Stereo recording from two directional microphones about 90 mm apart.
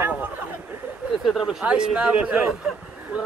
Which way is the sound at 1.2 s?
Centre (ahead or behind).